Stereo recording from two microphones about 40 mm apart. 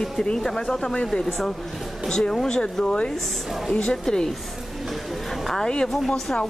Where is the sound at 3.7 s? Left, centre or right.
Left.